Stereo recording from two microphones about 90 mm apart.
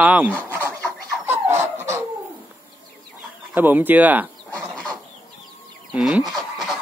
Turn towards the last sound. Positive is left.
turn(degrees=0)  # may be behind; listen again after turning